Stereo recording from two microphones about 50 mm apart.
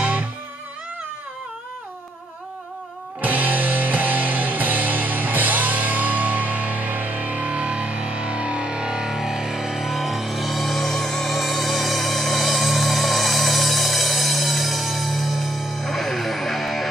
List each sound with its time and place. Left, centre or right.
0.0 s music: right
3.2 s music: right; by 16.8 s centre